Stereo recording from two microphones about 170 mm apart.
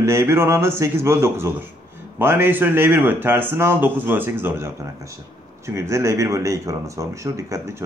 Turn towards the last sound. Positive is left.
turn(degrees=-15)  # may be behind; listen again after turning